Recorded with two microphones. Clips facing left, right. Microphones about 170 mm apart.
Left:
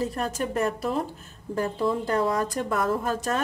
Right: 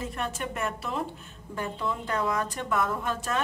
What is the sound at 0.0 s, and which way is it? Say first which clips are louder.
A woman's voice: left 5 dB; 35° left (ahead or behind).